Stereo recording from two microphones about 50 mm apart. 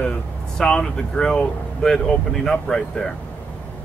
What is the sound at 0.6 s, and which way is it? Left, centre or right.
Speech, centre.